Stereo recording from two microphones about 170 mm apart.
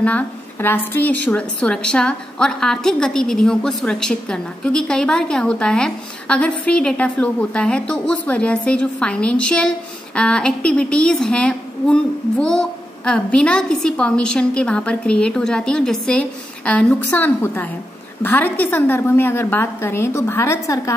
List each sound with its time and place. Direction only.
0.0 s a woman's voice: 10° left (ahead or behind)